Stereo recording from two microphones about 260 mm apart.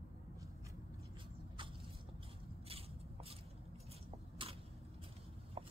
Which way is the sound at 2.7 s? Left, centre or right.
Right.